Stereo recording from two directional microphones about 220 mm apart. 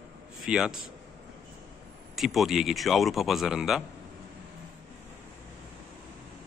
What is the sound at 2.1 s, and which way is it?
Speech, centre (ahead or behind).